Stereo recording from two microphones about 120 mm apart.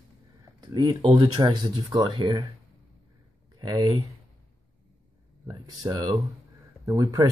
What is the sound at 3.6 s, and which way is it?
Speech, 35° right (ahead or behind).